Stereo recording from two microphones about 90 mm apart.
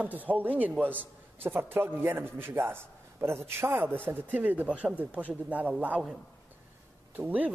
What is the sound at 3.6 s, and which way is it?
A man's voice, 20° right (ahead or behind).